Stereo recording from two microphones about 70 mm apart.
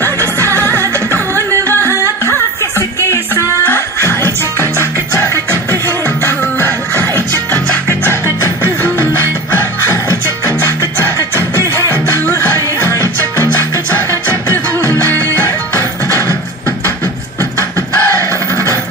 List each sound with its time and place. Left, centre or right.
0.0 s music: right
2.0 s music: left
11.1 s music: left
11.9 s music: left
17.4 s music: left